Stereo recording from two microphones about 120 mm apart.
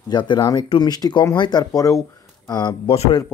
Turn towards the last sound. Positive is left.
turn(degrees=60)  # may be behind; listen again after turning